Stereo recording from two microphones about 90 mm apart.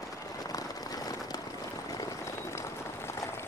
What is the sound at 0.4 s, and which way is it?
Vehicle, 45° left (ahead or behind).